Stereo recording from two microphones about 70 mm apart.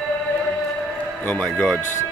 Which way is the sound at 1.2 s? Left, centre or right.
Centre.